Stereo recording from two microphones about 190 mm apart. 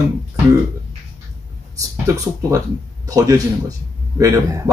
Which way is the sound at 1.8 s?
15° right (ahead or behind).